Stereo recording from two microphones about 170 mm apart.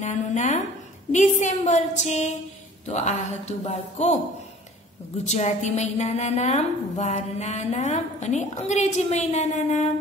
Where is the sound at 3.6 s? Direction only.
40° left (ahead or behind).